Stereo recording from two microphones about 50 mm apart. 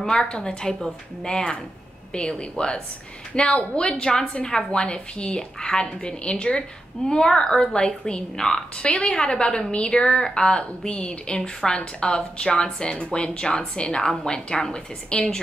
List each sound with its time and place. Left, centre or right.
0.0 s a woman's voice: centre